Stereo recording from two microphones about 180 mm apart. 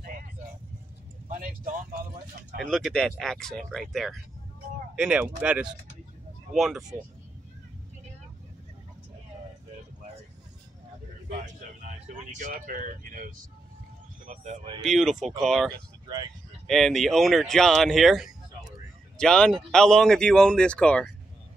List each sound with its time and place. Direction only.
1.3 s a sound: 50° right (ahead or behind)
2.6 s speech: 5° left (ahead or behind)
12.4 s speech: 45° right (ahead or behind)
14.8 s speech: centre (ahead or behind)